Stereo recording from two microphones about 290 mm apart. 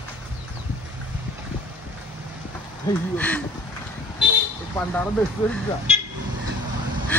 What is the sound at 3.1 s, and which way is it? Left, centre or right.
Speech, centre.